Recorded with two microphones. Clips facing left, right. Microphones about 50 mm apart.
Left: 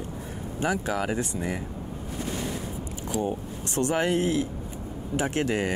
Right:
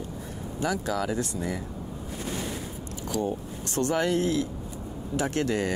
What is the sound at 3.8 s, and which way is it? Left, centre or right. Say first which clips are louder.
Speech: left 1 dB; centre.